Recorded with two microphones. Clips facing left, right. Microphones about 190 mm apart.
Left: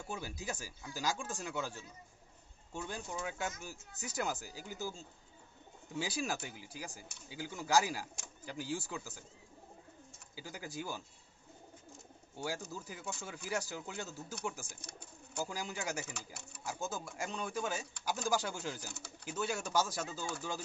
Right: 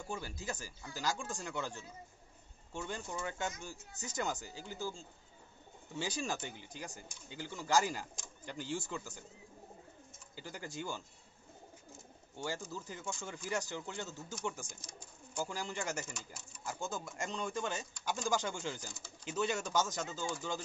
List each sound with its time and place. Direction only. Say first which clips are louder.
0.0 s speech: even; 10° left (ahead or behind)
10.3 s speech: even; 10° left (ahead or behind)
12.7 s speech: right 1 dB; 10° left (ahead or behind)
14.7 s speech: left 1 dB; 65° left (ahead or behind)
15.3 s speech: right 1 dB; 10° left (ahead or behind)
18.9 s speech: left 2 dB; 65° left (ahead or behind)
19.2 s speech: right 2 dB; 5° left (ahead or behind)